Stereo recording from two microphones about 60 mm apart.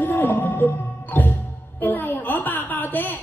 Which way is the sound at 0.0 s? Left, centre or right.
Left.